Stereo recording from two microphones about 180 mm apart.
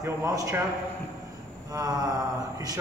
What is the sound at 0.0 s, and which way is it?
Speech, 15° right (ahead or behind).